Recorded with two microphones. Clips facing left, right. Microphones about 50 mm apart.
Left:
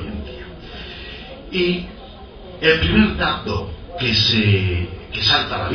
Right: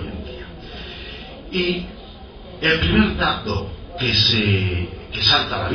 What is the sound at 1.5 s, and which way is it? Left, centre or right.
Speech, left.